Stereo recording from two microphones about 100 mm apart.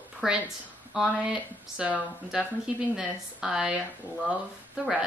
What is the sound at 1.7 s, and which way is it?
A woman's voice, 15° right (ahead or behind).